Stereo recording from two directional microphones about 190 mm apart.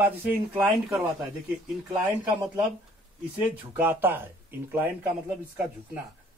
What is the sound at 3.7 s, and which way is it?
Speech, 10° right (ahead or behind).